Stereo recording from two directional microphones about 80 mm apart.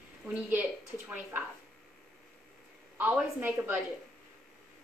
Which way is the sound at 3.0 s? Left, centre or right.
Centre.